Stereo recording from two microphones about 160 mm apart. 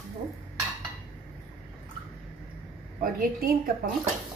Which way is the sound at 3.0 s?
70° right (ahead or behind).